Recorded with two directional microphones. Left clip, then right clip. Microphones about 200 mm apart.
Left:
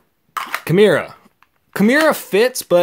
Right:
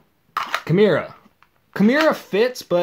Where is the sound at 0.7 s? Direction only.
35° left (ahead or behind).